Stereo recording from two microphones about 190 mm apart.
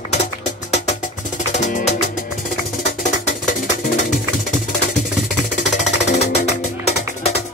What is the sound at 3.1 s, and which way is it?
Music, 40° left (ahead or behind).